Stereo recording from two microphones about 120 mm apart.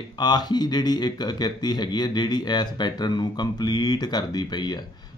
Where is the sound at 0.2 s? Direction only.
35° left (ahead or behind).